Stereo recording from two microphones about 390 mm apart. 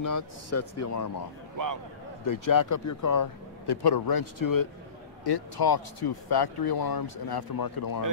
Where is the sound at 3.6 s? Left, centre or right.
Left.